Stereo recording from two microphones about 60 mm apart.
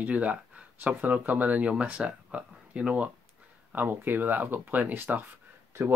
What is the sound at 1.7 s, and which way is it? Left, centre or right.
Speech, centre.